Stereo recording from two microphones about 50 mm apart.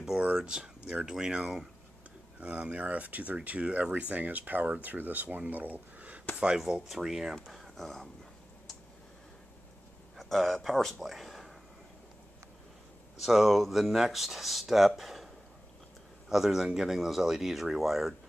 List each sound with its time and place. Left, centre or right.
0.2 s a sound: right
1.0 s speech: centre
2.4 s speech: right
6.6 s speech: centre
10.1 s a man's voice: centre
13.2 s speech: centre
15.0 s a sound: centre
16.3 s a man's voice: centre